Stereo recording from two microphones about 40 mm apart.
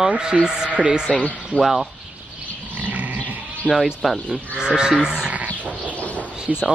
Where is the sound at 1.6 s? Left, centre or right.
Centre.